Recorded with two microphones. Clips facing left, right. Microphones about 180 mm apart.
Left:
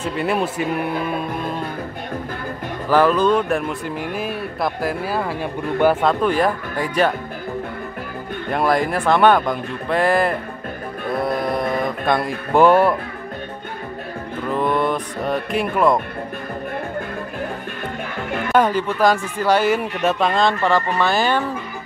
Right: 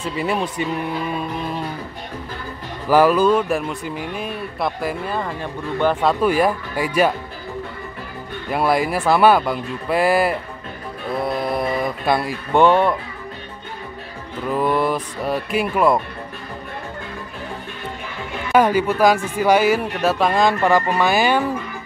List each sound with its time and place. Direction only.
0.0 s speech: centre (ahead or behind)
0.7 s music: 55° left (ahead or behind)
2.9 s speech: 10° right (ahead or behind); by 6.0 s 10° left (ahead or behind)
6.0 s speech: 10° right (ahead or behind)
8.5 s speech: 5° right (ahead or behind)
11.1 s a sound: centre (ahead or behind)
12.5 s speech: 5° left (ahead or behind)
14.5 s speech: 5° right (ahead or behind)
18.5 s speech: 5° right (ahead or behind)